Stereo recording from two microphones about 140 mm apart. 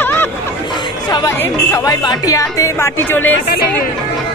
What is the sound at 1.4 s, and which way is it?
Speech, 25° left (ahead or behind).